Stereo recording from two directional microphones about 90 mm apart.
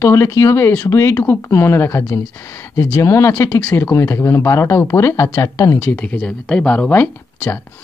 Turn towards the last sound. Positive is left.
turn(degrees=20)  # may be behind; listen again after turning